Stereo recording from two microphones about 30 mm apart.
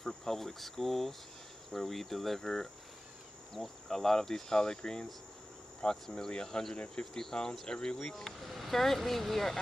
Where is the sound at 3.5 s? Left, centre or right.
Centre.